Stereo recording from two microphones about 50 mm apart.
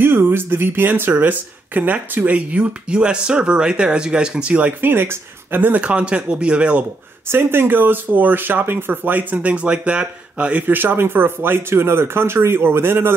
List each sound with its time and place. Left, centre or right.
0.0 s speech: right
4.8 s speech: right
5.8 s speech: right
7.2 s speech: right
10.7 s speech: right